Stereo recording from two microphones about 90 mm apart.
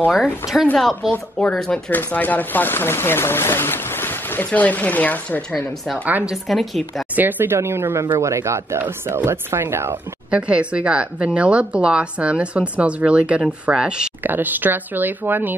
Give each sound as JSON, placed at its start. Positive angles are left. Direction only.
{"t": 0.1, "sound": "a woman's voice", "side_deg": -5}
{"t": 1.9, "sound": "speech", "side_deg": 20}
{"t": 6.0, "sound": "speech", "side_deg": -20}
{"t": 6.3, "sound": "a woman's voice", "side_deg": 0}
{"t": 7.2, "sound": "speech", "side_deg": -20}
{"t": 10.3, "sound": "a woman's voice", "side_deg": -15}
{"t": 14.2, "sound": "speech", "side_deg": -20}